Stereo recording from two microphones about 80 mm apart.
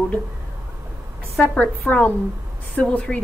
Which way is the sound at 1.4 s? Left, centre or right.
Centre.